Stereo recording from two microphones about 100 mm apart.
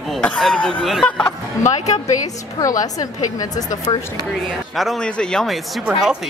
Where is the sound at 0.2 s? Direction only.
5° left (ahead or behind).